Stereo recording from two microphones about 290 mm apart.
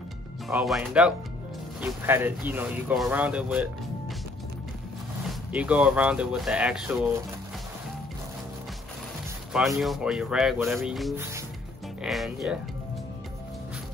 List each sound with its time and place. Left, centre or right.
0.5 s speech: centre
5.5 s speech: centre
9.5 s speech: centre